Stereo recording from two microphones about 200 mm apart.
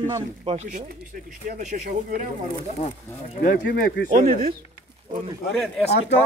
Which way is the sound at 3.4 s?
45° left (ahead or behind).